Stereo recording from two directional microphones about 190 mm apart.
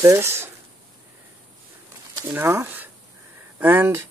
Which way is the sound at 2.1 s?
10° right (ahead or behind).